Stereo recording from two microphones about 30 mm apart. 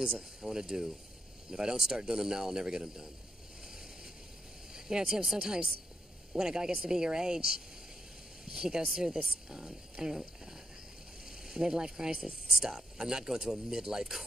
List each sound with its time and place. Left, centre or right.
0.4 s speech: centre
4.7 s speech: centre
11.2 s speech: centre
12.3 s speech: centre